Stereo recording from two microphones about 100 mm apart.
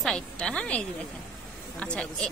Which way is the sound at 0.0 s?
5° left (ahead or behind).